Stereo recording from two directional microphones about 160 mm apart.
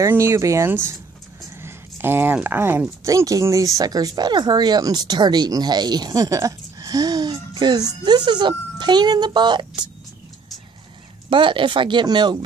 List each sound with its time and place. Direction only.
0.0 s speech: 15° right (ahead or behind)
11.2 s speech: 30° right (ahead or behind)